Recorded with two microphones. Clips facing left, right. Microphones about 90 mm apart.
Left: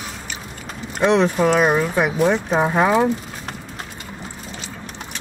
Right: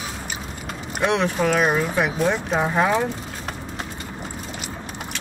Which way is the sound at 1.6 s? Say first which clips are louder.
Left 3 dB; 10° left (ahead or behind).